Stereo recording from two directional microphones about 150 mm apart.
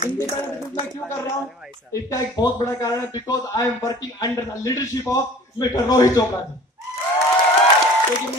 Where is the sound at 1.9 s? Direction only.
20° left (ahead or behind).